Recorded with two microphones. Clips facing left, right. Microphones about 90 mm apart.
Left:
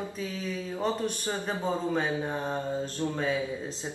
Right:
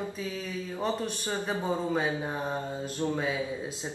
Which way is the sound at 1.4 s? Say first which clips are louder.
Even; 10° right (ahead or behind).